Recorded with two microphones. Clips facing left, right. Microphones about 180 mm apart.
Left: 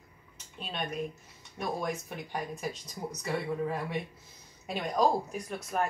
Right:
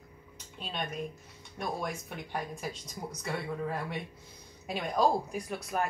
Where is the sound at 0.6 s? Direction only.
Centre (ahead or behind).